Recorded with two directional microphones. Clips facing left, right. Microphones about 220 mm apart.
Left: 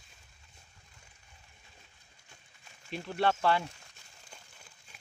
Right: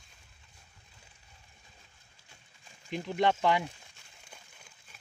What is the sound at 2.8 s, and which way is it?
Speech, 15° right (ahead or behind).